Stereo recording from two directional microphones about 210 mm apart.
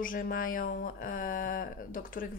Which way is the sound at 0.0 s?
40° left (ahead or behind).